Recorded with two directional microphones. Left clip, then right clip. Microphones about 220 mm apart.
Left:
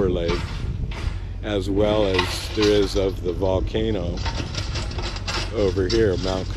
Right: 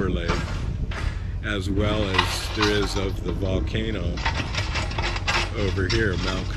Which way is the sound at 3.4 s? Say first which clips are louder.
Left 6 dB; 10° left (ahead or behind).